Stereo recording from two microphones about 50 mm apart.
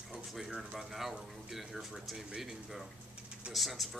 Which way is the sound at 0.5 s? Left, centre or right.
Centre.